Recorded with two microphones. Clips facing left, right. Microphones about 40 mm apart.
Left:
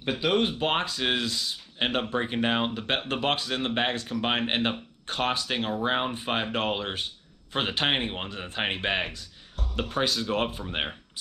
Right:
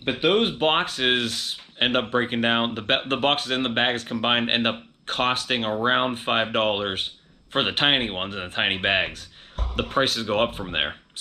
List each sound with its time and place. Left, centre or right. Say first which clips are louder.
0.0 s speech: right 4 dB; right
10.2 s speech: right 5 dB; right